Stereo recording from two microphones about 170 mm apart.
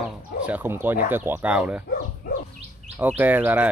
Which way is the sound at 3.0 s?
10° right (ahead or behind).